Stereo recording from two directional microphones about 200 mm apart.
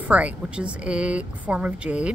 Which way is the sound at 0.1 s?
5° right (ahead or behind).